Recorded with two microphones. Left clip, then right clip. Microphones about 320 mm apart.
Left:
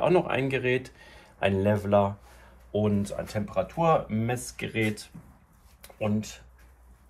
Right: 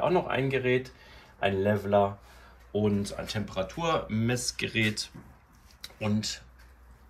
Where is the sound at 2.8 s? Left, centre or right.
Left.